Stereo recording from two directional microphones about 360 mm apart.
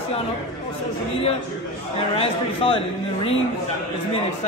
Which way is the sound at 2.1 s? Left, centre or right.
Centre.